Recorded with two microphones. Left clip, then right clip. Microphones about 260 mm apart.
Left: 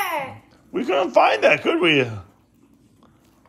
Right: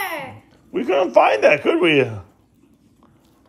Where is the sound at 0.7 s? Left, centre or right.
Centre.